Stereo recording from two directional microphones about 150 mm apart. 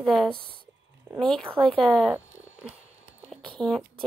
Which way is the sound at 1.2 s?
5° left (ahead or behind).